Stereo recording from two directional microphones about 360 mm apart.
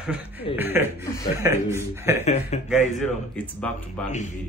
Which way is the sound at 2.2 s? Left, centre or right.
Centre.